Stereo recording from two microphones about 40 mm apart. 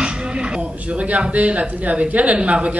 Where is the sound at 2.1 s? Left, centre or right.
Right.